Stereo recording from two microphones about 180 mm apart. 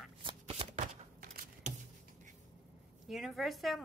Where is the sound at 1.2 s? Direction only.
50° right (ahead or behind).